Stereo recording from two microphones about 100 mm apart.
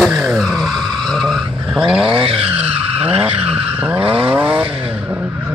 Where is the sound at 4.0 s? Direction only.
70° right (ahead or behind).